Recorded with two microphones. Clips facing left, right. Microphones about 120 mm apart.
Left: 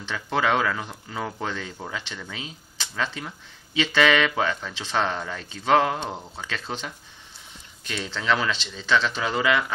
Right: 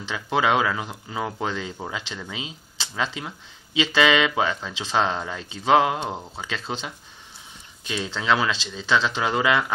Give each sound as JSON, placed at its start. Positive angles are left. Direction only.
{"t": 0.1, "sound": "speech", "side_deg": -10}
{"t": 3.8, "sound": "speech", "side_deg": -15}
{"t": 7.8, "sound": "speech", "side_deg": -15}